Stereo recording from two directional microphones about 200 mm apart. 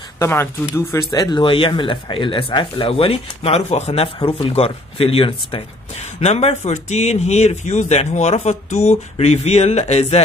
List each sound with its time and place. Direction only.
0.2 s speech: 15° left (ahead or behind); by 10.2 s 30° left (ahead or behind)